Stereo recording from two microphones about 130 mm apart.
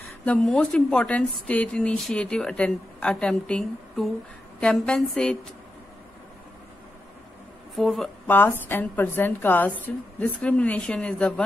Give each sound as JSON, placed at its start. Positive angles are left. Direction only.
{"t": 0.2, "sound": "a woman's voice", "side_deg": 5}
{"t": 7.7, "sound": "speech", "side_deg": 0}
{"t": 8.3, "sound": "a woman's voice", "side_deg": 15}